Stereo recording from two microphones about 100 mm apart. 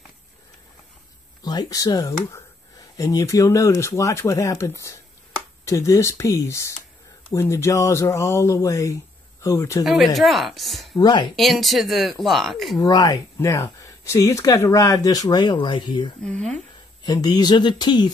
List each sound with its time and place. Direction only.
1.4 s speech: 40° left (ahead or behind)
9.8 s a woman's voice: centre (ahead or behind)
11.0 s speech: 45° left (ahead or behind)
11.3 s a woman's voice: centre (ahead or behind)
12.7 s speech: 35° left (ahead or behind)
16.2 s speech: 10° left (ahead or behind)
17.0 s speech: 40° left (ahead or behind)